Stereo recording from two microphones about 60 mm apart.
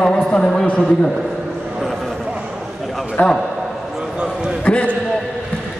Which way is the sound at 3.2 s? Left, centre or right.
Left.